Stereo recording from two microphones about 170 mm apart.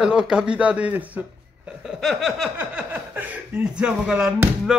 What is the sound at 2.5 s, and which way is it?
Speech, 10° right (ahead or behind).